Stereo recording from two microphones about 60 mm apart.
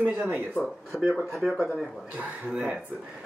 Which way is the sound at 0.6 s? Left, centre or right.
Centre.